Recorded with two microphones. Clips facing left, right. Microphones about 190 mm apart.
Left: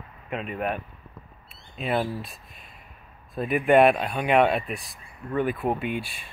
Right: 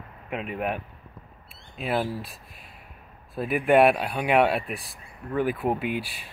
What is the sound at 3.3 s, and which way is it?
Speech, 5° right (ahead or behind).